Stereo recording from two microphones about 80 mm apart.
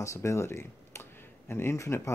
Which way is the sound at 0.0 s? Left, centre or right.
Left.